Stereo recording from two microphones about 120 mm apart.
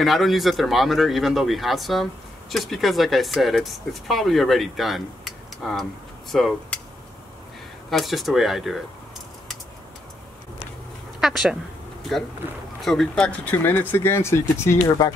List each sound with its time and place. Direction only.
0.0 s speech: centre (ahead or behind)
7.9 s speech: centre (ahead or behind)
11.1 s speech: centre (ahead or behind); by 15.1 s 25° left (ahead or behind)